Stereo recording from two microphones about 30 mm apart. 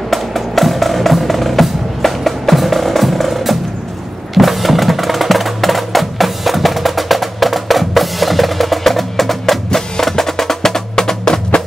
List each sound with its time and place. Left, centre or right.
0.1 s music: centre